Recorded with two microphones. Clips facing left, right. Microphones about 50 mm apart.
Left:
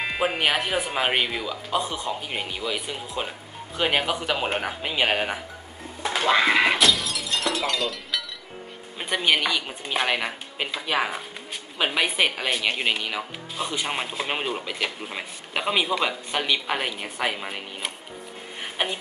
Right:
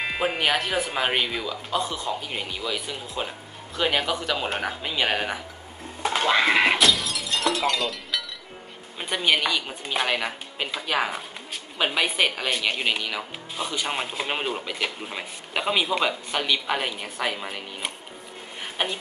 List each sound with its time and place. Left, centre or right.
0.0 s speech: centre
6.0 s breaking: centre
9.2 s speech: centre
18.6 s a sound: centre